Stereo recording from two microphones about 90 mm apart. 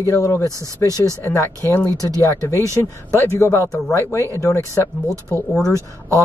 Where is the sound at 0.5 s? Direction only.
35° right (ahead or behind).